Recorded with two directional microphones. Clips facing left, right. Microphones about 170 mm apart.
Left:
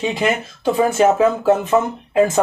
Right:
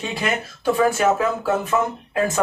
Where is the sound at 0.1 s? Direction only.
20° left (ahead or behind).